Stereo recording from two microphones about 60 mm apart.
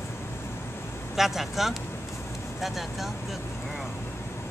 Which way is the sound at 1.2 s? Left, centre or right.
Centre.